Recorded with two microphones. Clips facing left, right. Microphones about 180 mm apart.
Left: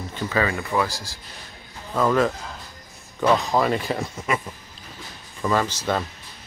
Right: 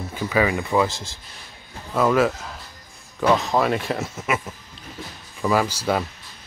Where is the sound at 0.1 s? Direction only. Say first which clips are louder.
Right 3 dB; 10° right (ahead or behind).